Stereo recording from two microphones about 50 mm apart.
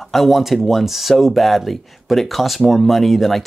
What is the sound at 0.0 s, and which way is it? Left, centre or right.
Speech, centre.